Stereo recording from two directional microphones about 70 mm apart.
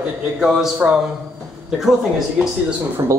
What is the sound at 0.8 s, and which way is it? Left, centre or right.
Speech, centre.